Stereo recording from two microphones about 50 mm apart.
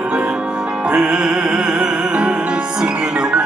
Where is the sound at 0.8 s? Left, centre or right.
Centre.